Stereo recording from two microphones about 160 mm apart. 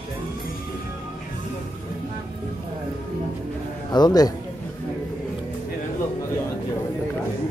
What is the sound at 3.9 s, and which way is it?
Speech, 25° left (ahead or behind).